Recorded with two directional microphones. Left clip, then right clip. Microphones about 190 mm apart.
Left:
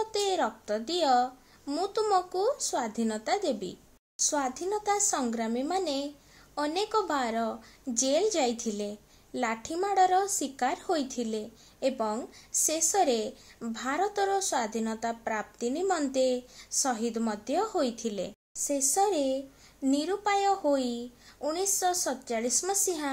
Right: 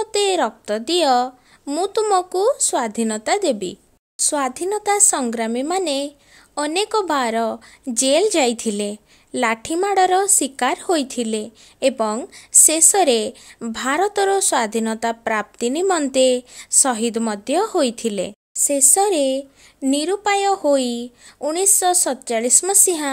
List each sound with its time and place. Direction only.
0.0 s speech: 45° right (ahead or behind)